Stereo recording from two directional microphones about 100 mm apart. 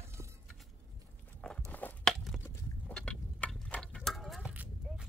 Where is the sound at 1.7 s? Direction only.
15° left (ahead or behind).